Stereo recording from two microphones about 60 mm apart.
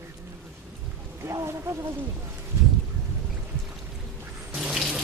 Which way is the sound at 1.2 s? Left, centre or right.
Right.